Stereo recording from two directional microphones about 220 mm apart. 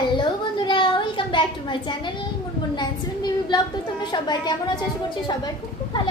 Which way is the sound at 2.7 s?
20° left (ahead or behind).